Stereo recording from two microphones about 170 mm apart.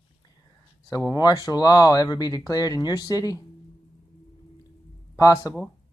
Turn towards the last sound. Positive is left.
turn(degrees=20)  # may be behind; listen again after turning